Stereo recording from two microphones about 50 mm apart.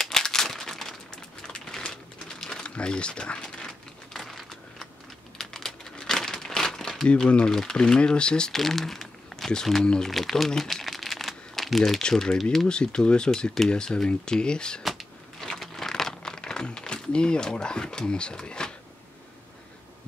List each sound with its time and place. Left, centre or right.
0.0 s a sound: centre
4.1 s a sound: centre
5.4 s crumpling: centre
7.1 s speech: left
8.5 s speech: centre
10.0 s crumpling: centre
12.0 s speech: centre
14.8 s a sound: centre
15.4 s crumpling: centre